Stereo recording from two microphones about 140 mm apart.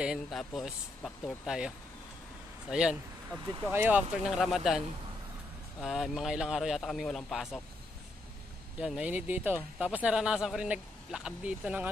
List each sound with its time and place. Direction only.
0.0 s speech: 5° right (ahead or behind)
2.7 s speech: 5° right (ahead or behind)
8.7 s speech: 5° right (ahead or behind)